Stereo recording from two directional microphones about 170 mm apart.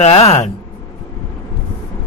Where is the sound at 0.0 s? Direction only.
35° left (ahead or behind).